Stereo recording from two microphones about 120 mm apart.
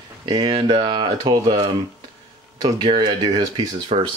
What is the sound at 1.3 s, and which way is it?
Speech, 35° right (ahead or behind).